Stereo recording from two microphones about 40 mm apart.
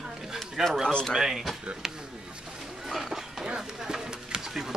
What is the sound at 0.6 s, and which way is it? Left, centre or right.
Speech, centre.